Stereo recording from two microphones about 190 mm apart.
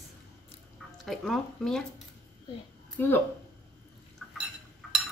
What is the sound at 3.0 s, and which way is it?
Speech, 10° left (ahead or behind).